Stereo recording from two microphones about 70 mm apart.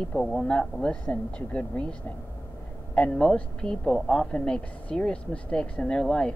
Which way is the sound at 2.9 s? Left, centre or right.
Centre.